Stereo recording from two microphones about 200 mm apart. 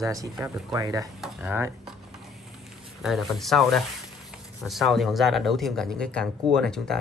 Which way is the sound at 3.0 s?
Centre (ahead or behind).